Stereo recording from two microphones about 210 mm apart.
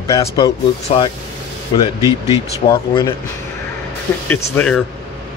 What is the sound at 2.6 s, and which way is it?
Speech, 20° left (ahead or behind).